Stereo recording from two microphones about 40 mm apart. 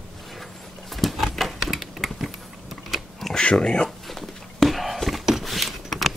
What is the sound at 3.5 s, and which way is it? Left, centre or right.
Speech, left.